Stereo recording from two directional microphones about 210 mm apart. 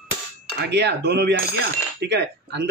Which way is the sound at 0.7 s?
55° right (ahead or behind).